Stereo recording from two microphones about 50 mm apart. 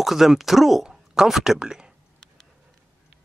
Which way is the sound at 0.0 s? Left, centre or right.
Centre.